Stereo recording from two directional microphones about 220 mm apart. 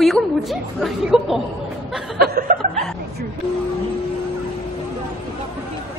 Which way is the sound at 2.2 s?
40° right (ahead or behind).